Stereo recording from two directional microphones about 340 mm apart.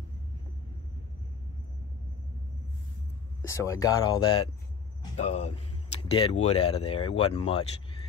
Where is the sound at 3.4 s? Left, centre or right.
Centre.